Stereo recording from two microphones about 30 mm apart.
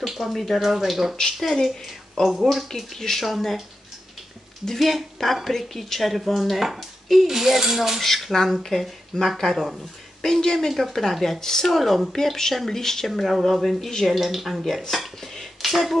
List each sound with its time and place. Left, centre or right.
0.0 s cutlery: centre
0.3 s a woman's voice: centre
0.6 s cutlery: centre
1.4 s a woman's voice: centre
4.7 s a woman's voice: centre
7.2 s cutlery: centre
8.0 s a woman's voice: centre
10.2 s speech: left
11.7 s a woman's voice: centre